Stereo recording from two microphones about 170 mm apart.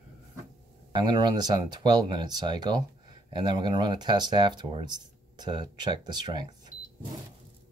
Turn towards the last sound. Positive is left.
turn(degrees=-25)  # may be behind; listen again after turning